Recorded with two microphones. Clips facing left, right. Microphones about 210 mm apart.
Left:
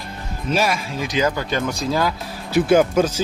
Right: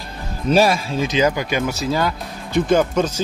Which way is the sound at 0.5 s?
35° right (ahead or behind).